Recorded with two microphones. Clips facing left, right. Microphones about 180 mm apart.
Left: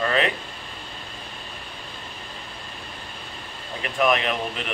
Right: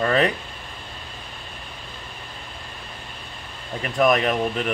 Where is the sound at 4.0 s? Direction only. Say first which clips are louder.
Right 3 dB; 40° right (ahead or behind).